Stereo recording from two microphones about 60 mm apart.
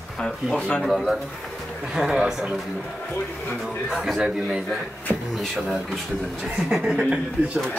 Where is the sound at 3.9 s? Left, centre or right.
Centre.